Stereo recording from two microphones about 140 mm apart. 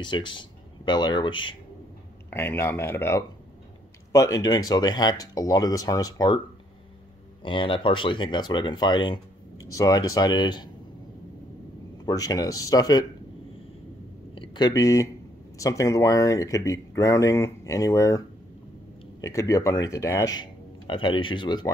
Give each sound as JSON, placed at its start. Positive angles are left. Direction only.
{"t": 0.0, "sound": "speech", "side_deg": 35}
{"t": 2.3, "sound": "speech", "side_deg": 15}
{"t": 7.4, "sound": "speech", "side_deg": 35}
{"t": 12.0, "sound": "speech", "side_deg": 25}
{"t": 14.3, "sound": "a sound", "side_deg": 35}
{"t": 15.5, "sound": "speech", "side_deg": 25}
{"t": 19.2, "sound": "speech", "side_deg": 20}
{"t": 20.8, "sound": "speech", "side_deg": 35}